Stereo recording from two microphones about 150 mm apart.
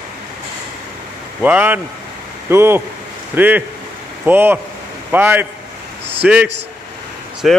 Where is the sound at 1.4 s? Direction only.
10° right (ahead or behind).